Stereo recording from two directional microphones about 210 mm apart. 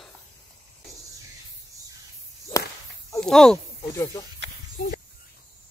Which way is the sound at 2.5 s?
15° left (ahead or behind).